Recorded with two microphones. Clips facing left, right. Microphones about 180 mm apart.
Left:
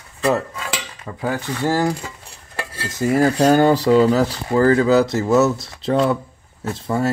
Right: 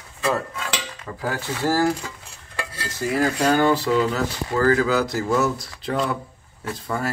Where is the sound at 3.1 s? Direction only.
40° left (ahead or behind); by 7.0 s 25° left (ahead or behind).